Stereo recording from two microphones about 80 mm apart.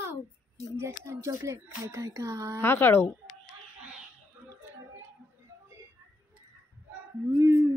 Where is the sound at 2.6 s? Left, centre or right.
Left.